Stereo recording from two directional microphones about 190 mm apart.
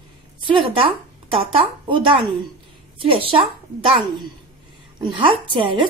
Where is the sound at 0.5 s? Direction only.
25° right (ahead or behind).